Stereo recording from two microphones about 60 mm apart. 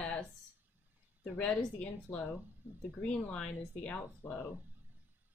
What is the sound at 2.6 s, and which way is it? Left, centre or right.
Speech, right.